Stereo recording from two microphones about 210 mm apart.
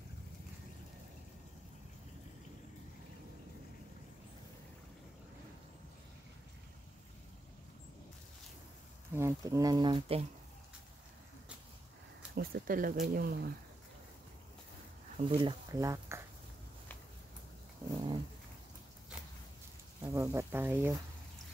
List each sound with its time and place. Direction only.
9.1 s speech: 15° right (ahead or behind)
12.4 s speech: 45° right (ahead or behind)
15.1 s speech: 25° right (ahead or behind)
17.9 s dog: 20° right (ahead or behind)
20.0 s speech: 15° right (ahead or behind)